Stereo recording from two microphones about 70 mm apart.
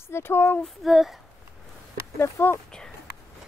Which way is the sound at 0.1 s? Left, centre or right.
Left.